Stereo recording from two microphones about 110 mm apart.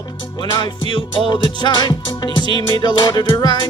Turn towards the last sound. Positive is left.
turn(degrees=40)  # may be behind; listen again after turning